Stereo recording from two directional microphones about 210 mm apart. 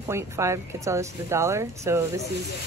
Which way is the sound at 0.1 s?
15° right (ahead or behind).